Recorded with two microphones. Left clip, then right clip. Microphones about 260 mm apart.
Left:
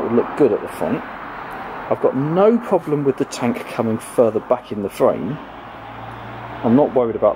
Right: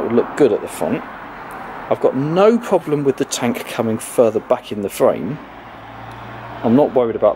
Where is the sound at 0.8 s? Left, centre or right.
Left.